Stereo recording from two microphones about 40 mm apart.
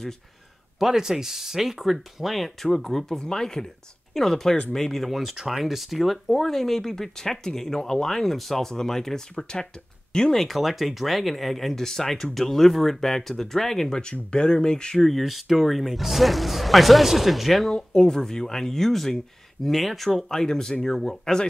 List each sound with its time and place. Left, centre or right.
0.7 s speech: centre
10.3 s speech: centre; by 15.0 s left
15.0 s speech: centre
17.7 s speech: centre
20.2 s speech: centre